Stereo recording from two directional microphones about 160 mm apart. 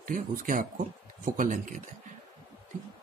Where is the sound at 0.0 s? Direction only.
60° right (ahead or behind).